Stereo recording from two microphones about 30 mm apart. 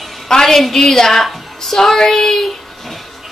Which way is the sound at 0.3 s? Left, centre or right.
Centre.